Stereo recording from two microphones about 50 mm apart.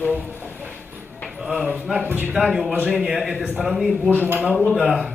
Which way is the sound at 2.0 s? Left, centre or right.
Right.